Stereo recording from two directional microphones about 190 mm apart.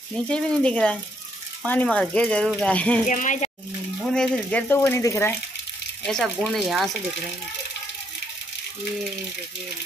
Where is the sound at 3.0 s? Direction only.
40° left (ahead or behind).